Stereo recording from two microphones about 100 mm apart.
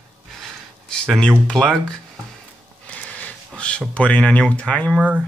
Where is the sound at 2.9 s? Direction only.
10° left (ahead or behind).